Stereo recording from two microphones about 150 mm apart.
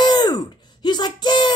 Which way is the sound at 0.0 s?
25° left (ahead or behind).